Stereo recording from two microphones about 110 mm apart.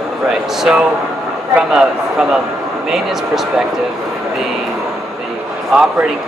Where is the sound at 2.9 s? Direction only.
5° right (ahead or behind).